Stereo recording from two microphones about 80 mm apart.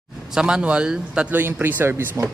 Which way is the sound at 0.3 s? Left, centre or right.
Centre.